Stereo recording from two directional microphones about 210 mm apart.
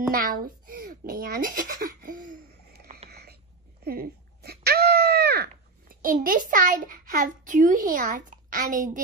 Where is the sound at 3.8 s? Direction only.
50° right (ahead or behind).